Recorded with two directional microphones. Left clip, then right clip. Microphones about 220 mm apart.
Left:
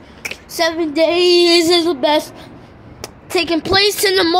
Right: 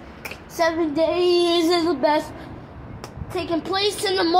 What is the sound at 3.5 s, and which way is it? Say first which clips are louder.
Speech: left 7 dB; 25° left (ahead or behind).